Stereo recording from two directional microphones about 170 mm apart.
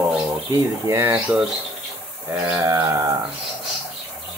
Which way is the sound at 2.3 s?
15° right (ahead or behind).